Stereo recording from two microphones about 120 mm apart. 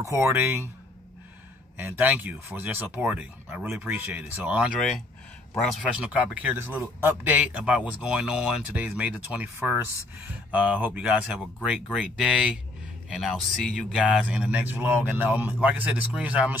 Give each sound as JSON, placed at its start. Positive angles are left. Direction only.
{"t": 0.0, "sound": "speech", "side_deg": -25}
{"t": 1.8, "sound": "speech", "side_deg": -20}
{"t": 5.6, "sound": "speech", "side_deg": 0}
{"t": 5.9, "sound": "speech", "side_deg": -10}